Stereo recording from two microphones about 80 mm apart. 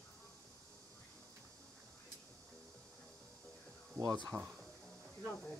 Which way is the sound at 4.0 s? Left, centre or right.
Right.